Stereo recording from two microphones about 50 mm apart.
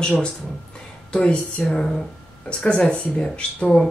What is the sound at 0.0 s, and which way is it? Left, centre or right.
Speech, centre.